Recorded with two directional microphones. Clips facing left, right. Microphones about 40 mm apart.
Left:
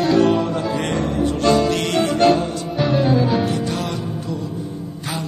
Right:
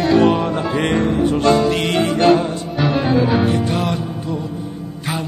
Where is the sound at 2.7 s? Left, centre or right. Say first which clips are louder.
Even; centre.